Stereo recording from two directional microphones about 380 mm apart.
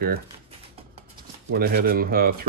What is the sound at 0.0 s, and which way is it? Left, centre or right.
Speech, right.